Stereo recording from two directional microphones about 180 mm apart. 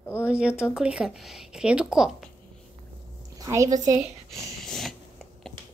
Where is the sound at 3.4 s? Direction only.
15° right (ahead or behind).